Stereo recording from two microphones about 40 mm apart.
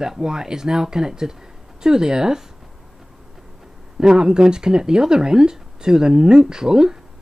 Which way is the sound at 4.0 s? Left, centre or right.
Centre.